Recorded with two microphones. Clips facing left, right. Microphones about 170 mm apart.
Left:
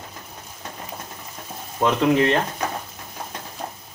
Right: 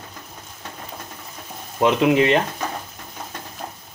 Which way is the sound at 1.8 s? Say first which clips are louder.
Right 2 dB; 15° right (ahead or behind).